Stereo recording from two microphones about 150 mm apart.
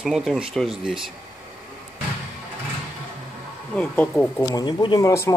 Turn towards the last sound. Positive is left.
turn(degrees=30)  # may be behind; listen again after turning